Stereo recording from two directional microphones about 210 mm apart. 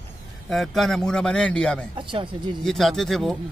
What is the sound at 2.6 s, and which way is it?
Speech, centre (ahead or behind).